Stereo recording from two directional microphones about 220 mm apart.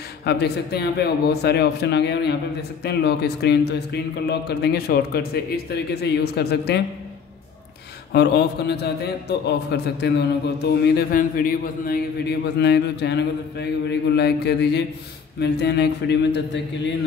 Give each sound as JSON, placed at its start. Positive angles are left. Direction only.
{"t": 0.2, "sound": "speech", "side_deg": 50}
{"t": 8.1, "sound": "speech", "side_deg": 50}